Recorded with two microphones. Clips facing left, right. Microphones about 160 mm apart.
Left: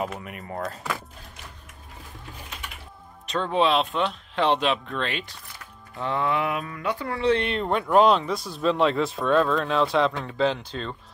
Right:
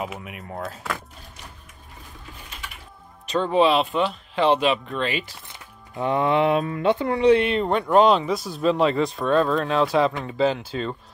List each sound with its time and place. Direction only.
0.0 s speech: 5° right (ahead or behind)
3.3 s speech: centre (ahead or behind)
5.5 s speech: 20° right (ahead or behind)
7.3 s speech: centre (ahead or behind)